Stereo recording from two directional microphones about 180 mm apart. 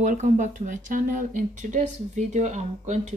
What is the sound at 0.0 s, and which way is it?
A woman's voice, 45° right (ahead or behind).